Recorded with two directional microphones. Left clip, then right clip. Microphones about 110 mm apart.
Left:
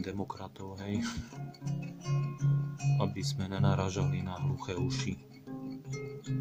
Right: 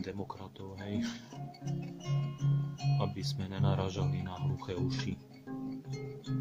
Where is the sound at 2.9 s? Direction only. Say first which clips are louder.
Left 3 dB; 30° left (ahead or behind).